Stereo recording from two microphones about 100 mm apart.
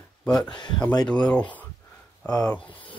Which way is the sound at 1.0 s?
10° left (ahead or behind).